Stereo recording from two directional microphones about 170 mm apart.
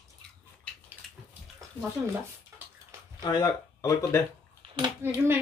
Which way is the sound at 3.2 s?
25° left (ahead or behind).